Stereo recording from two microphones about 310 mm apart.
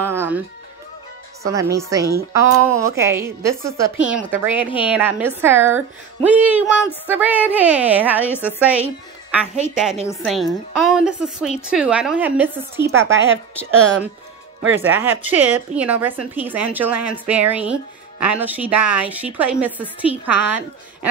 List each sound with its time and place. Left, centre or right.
0.0 s music: centre
1.4 s a woman's voice: centre
8.3 s a woman's voice: centre
14.7 s a woman's voice: centre